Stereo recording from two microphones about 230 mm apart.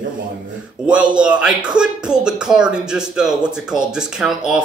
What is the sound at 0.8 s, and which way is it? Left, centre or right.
Speech, centre.